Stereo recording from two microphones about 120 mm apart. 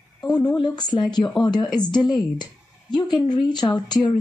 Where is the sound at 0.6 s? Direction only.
35° left (ahead or behind).